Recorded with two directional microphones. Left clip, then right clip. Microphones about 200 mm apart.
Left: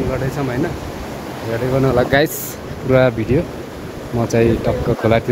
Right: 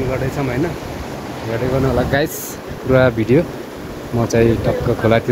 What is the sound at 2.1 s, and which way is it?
Speech, 30° left (ahead or behind).